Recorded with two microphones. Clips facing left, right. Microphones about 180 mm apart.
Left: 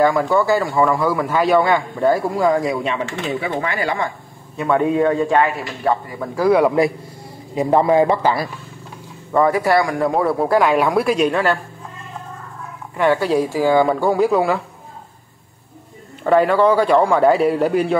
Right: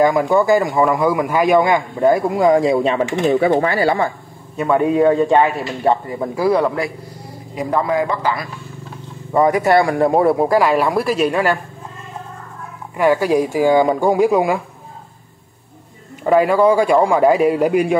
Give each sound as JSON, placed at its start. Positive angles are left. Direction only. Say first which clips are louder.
{"t": 0.0, "sound": "a man's voice", "louder": "right 2 dB", "side_deg": -20}
{"t": 4.6, "sound": "speech", "louder": "right 2 dB", "side_deg": -15}
{"t": 7.5, "sound": "a man's voice", "louder": "left 4 dB", "side_deg": 25}
{"t": 9.3, "sound": "speech", "louder": "right 2 dB", "side_deg": -15}
{"t": 10.5, "sound": "a woman's voice", "louder": "even", "side_deg": 0}
{"t": 12.9, "sound": "a man's voice", "louder": "right 2 dB", "side_deg": -10}
{"t": 16.3, "sound": "a man's voice", "louder": "right 1 dB", "side_deg": -10}